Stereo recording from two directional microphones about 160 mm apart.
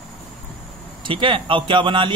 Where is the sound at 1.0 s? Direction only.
30° right (ahead or behind).